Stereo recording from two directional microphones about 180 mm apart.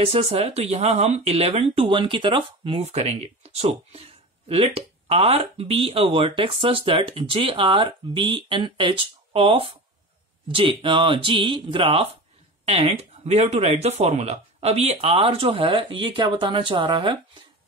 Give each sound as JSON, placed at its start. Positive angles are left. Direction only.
{"t": 0.0, "sound": "speech", "side_deg": -35}